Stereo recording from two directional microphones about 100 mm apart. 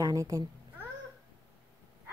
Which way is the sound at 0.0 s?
35° right (ahead or behind).